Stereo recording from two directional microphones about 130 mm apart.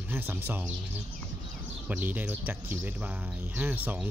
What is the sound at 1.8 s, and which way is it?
Speech, 15° right (ahead or behind).